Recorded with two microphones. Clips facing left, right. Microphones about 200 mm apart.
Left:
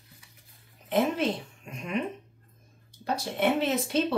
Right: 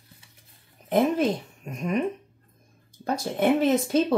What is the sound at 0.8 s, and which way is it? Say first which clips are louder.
A woman's voice: right 4 dB; 40° right (ahead or behind).